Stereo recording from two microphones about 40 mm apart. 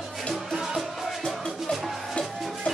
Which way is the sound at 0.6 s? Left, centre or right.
Centre.